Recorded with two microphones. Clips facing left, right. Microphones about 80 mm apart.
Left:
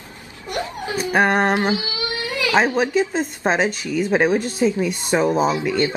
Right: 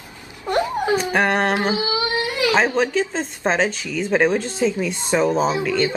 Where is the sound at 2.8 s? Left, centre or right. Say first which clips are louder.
Left 1 dB; centre.